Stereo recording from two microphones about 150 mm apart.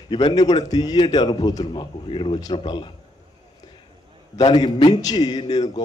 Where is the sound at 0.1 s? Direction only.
30° left (ahead or behind).